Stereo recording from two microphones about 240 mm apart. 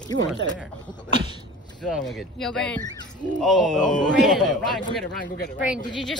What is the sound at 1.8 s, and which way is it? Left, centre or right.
A man's voice, centre.